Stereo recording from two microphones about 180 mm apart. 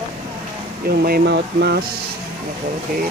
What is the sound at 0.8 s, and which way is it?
Speech, 55° right (ahead or behind).